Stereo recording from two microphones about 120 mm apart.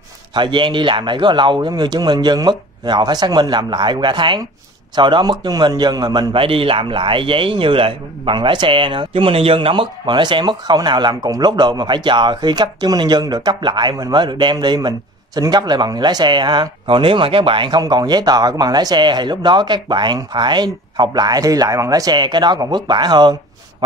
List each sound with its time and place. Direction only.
0.3 s a man's voice: 40° right (ahead or behind)
6.3 s a man's voice: 50° right (ahead or behind)